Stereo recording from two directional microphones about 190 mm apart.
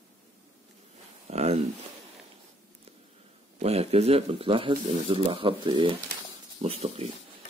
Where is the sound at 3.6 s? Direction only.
35° right (ahead or behind).